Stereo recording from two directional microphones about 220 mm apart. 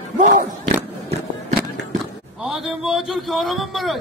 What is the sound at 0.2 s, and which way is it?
Battle cry, 35° right (ahead or behind).